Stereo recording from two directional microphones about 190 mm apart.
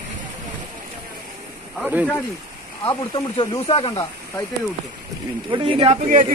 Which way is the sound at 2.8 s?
30° left (ahead or behind).